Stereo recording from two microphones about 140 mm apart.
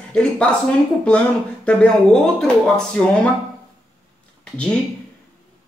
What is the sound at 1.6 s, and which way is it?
Speech, 5° left (ahead or behind).